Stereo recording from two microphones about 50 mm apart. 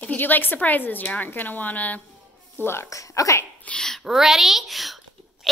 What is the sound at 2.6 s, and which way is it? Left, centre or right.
Speech, left.